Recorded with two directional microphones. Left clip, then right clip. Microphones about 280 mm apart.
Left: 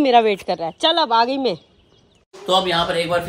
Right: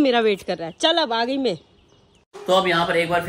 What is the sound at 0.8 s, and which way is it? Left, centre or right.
Speech, centre.